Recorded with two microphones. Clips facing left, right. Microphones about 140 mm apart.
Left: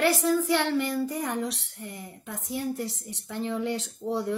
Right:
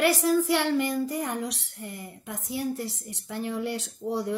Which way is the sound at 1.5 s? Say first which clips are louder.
Right 1 dB; 85° left.